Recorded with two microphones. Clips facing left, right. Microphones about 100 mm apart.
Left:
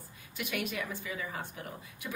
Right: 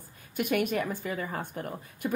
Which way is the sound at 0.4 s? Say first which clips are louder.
Right 8 dB; 50° right (ahead or behind).